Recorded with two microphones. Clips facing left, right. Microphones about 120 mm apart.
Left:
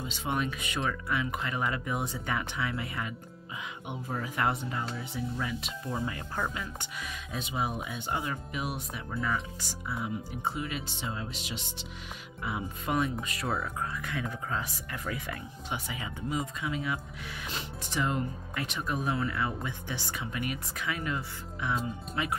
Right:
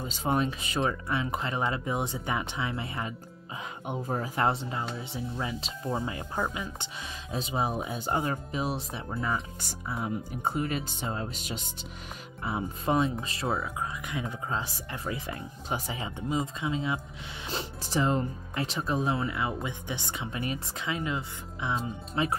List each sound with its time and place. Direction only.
0.0 s speech: 40° right (ahead or behind)
4.1 s speech: 30° right (ahead or behind)
7.3 s speech: 35° right (ahead or behind)
9.8 s speech: 40° right (ahead or behind)
12.4 s speech: 30° right (ahead or behind)
17.5 s speech: 35° right (ahead or behind)